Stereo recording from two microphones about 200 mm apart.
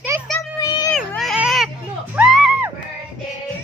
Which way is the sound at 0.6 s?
20° left (ahead or behind).